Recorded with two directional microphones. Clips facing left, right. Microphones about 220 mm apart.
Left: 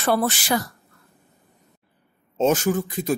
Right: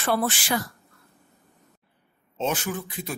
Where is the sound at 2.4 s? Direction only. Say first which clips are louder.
Left 8 dB; 45° left (ahead or behind).